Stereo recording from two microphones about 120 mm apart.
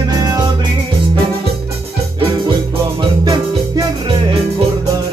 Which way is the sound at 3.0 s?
40° right (ahead or behind).